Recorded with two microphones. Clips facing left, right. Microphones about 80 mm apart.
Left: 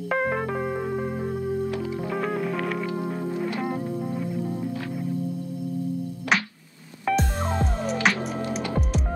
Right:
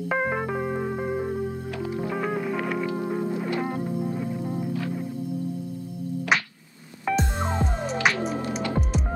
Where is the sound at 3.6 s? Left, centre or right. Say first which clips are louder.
Even; centre.